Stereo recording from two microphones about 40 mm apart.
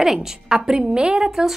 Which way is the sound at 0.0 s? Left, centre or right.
Centre.